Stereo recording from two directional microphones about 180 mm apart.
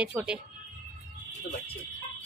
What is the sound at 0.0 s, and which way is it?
Speech, 5° right (ahead or behind).